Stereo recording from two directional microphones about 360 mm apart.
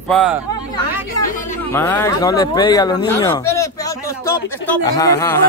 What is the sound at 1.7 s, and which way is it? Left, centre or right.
Speech, centre.